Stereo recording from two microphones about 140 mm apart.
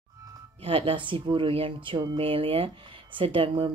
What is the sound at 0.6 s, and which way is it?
Speech, 40° right (ahead or behind).